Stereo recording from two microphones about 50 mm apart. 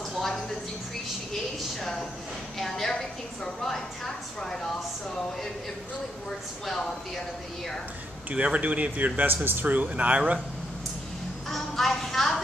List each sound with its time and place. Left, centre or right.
0.1 s a sound: centre
1.8 s speech: centre
2.6 s a sound: centre
2.9 s a woman's voice: centre
6.6 s speech: centre
8.3 s speech: right
9.3 s speech: right
11.5 s music: centre